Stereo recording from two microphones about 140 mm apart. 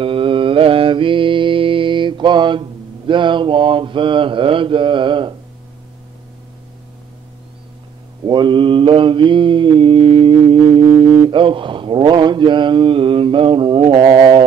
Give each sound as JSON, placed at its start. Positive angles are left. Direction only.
{"t": 0.0, "sound": "mantra", "side_deg": -40}
{"t": 8.3, "sound": "mantra", "side_deg": -35}